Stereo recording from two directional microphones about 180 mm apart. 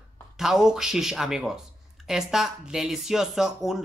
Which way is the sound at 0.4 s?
5° right (ahead or behind).